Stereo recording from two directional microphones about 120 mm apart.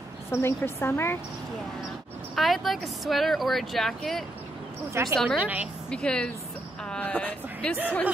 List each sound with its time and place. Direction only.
0.3 s a woman's voice: 20° left (ahead or behind)
2.3 s speech: centre (ahead or behind)
5.4 s a woman's voice: 10° right (ahead or behind)
5.9 s a woman's voice: 10° left (ahead or behind)
6.8 s a sound: 5° left (ahead or behind)